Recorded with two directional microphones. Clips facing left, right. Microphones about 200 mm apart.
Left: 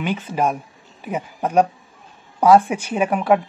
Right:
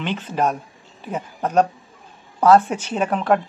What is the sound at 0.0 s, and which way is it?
Speech, 10° left (ahead or behind).